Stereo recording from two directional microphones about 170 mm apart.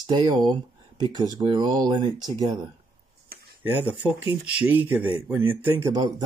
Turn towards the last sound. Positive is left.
turn(degrees=-25)  # may be behind; listen again after turning